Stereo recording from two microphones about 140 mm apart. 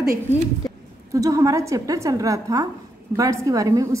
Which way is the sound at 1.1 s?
25° right (ahead or behind).